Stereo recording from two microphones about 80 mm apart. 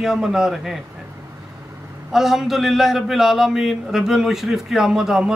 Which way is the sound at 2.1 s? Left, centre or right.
Centre.